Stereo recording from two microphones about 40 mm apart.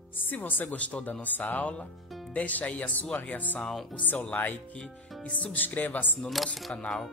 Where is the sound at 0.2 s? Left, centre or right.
Left.